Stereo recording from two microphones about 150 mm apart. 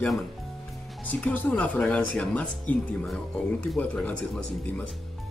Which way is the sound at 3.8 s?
10° left (ahead or behind).